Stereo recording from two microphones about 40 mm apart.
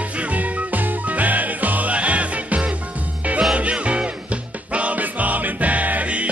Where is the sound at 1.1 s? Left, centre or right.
Right.